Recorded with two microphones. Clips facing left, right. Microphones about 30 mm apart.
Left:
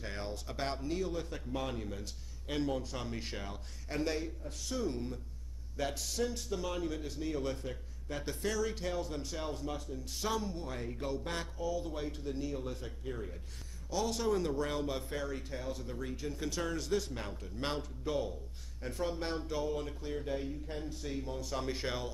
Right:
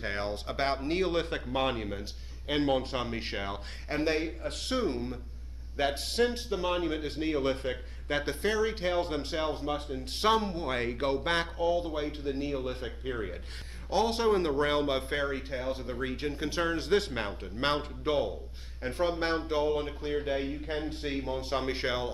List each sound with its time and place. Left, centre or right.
0.0 s speech: right
0.9 s a man's voice: right
2.7 s speech: right
4.4 s speech: right
8.3 s speech: right
16.3 s speech: right
16.9 s speech: right